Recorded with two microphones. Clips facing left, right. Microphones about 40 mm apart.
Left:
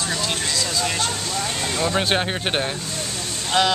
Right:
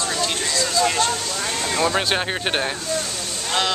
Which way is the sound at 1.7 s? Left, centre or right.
Centre.